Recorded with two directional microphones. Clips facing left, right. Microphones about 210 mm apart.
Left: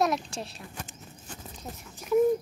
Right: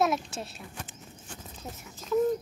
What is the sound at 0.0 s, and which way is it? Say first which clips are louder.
Speech: even; centre (ahead or behind).